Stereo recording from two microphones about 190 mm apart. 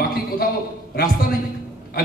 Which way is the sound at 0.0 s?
50° left (ahead or behind).